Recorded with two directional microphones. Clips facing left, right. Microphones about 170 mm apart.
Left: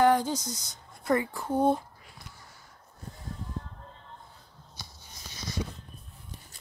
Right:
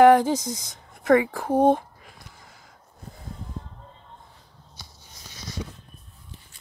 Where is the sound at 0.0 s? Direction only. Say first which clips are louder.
Right 8 dB; 90° right.